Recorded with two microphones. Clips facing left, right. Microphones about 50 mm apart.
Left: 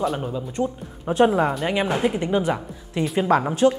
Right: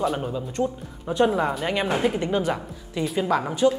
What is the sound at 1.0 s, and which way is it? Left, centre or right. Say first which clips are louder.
Speech: left 3 dB; left.